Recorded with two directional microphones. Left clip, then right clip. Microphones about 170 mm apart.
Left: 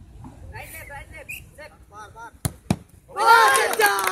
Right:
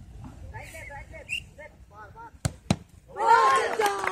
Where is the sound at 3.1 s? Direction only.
5° right (ahead or behind).